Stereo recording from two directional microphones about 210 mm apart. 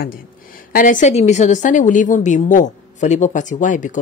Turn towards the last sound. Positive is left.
turn(degrees=35)  # may be behind; listen again after turning